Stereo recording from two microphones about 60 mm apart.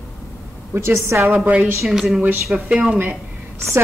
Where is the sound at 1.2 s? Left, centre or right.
Right.